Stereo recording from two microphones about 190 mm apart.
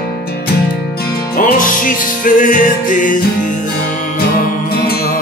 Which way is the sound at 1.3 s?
45° left (ahead or behind).